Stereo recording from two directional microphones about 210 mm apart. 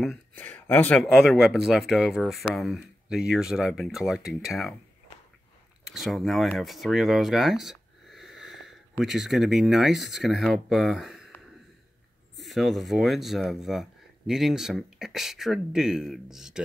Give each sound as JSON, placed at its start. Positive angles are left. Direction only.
{"t": 0.0, "sound": "speech", "side_deg": 5}
{"t": 5.9, "sound": "speech", "side_deg": 0}
{"t": 12.4, "sound": "speech", "side_deg": 0}